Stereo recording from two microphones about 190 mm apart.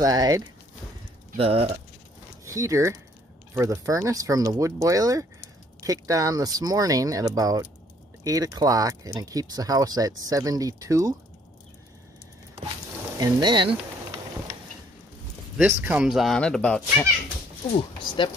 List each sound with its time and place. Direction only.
0.0 s speech: 20° right (ahead or behind)
1.3 s speech: 30° right (ahead or behind)
2.4 s speech: 15° right (ahead or behind)
13.2 s speech: 25° right (ahead or behind)
15.5 s speech: 5° right (ahead or behind)
17.6 s speech: 25° left (ahead or behind)